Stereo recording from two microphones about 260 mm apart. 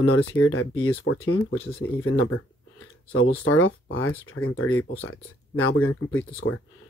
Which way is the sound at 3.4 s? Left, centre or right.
Left.